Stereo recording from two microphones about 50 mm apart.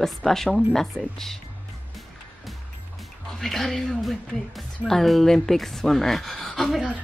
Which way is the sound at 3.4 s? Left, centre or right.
Centre.